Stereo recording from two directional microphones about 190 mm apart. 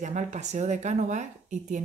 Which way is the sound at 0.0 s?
40° right (ahead or behind).